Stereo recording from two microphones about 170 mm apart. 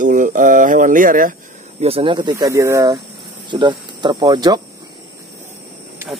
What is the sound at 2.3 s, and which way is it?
Speech, 15° right (ahead or behind).